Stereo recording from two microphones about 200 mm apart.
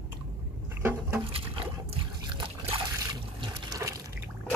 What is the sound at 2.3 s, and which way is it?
Trickle, 25° right (ahead or behind).